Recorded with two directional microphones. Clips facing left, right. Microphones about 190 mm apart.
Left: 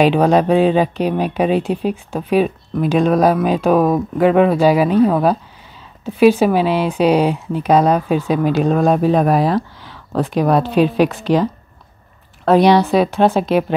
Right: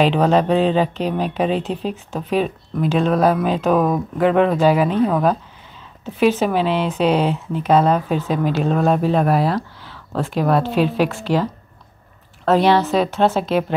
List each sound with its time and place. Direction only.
0.0 s a woman's voice: 10° left (ahead or behind)
12.4 s speech: 15° left (ahead or behind)